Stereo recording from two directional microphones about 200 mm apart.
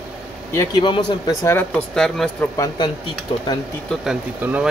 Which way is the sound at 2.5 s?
15° left (ahead or behind).